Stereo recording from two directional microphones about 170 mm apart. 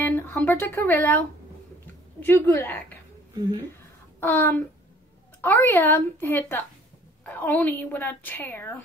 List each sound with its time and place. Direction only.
0.0 s a woman's voice: 15° left (ahead or behind)
4.2 s a woman's voice: 15° left (ahead or behind)